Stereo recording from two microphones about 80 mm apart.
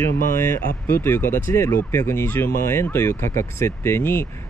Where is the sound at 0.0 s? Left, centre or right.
Left.